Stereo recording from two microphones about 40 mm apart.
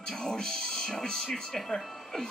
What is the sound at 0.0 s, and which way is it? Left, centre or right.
Music, centre.